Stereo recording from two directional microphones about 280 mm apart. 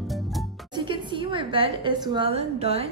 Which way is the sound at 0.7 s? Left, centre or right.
Centre.